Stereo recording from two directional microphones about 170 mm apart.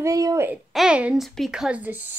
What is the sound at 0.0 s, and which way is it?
Speech, 20° right (ahead or behind).